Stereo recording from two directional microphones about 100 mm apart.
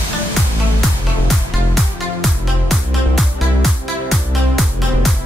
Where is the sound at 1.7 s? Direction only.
Centre (ahead or behind).